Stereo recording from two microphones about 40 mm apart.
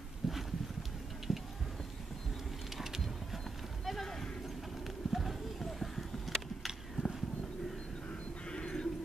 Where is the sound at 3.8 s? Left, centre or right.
Centre.